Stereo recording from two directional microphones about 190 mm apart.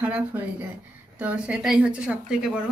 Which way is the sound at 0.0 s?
5° right (ahead or behind).